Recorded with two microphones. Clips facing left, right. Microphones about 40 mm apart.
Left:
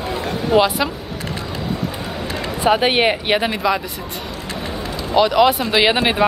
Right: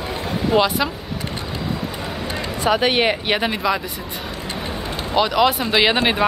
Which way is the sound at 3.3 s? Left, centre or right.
Centre.